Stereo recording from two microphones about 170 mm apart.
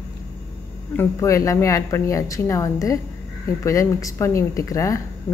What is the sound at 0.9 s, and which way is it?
Speech, 15° left (ahead or behind).